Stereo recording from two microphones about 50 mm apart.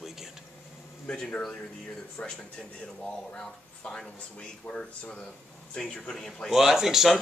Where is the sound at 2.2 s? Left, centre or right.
Left.